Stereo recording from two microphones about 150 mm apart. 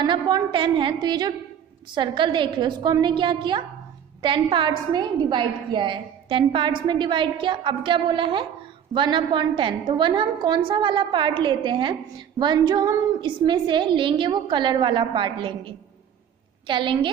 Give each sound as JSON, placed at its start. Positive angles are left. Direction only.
{"t": 0.0, "sound": "a woman's voice", "side_deg": -30}